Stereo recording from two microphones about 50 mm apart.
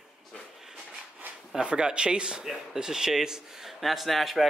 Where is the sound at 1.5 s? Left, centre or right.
Centre.